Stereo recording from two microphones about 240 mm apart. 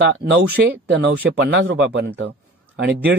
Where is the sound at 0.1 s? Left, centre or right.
Right.